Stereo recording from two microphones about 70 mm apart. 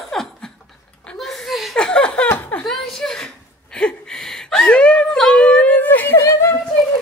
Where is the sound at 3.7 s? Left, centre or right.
Centre.